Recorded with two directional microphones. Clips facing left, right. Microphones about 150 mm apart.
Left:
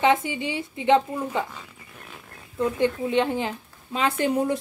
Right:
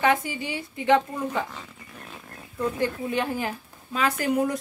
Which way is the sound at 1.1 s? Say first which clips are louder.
Left 1 dB; 10° left (ahead or behind).